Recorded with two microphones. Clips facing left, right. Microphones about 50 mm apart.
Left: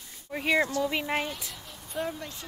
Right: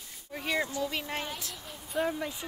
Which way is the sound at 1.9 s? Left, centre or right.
Centre.